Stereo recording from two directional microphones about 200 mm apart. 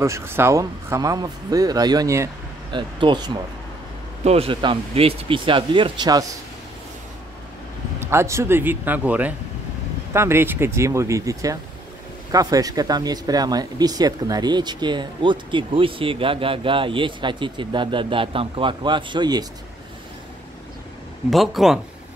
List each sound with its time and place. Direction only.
0.0 s speech: 15° right (ahead or behind)
8.0 s speech: 15° right (ahead or behind)
21.3 s speech: centre (ahead or behind)